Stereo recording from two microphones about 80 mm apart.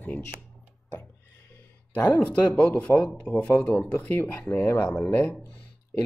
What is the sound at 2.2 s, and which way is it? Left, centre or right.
Speech, centre.